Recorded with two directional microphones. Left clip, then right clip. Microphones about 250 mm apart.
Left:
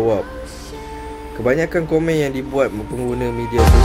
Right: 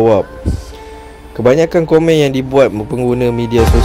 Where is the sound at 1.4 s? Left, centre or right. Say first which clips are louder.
Right 8 dB; right.